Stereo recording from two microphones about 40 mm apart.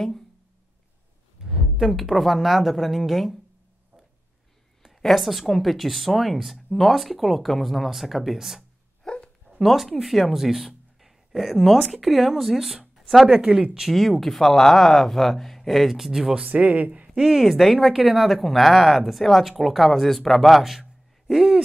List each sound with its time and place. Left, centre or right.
1.4 s speech: centre
4.8 s speech: centre
9.0 s a sound: left
9.6 s speech: centre
13.3 s speech: centre
13.7 s speech: centre
16.4 s speech: right
17.1 s speech: centre
21.3 s hoot: centre